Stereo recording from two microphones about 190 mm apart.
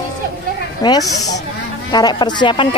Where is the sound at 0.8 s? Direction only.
20° left (ahead or behind).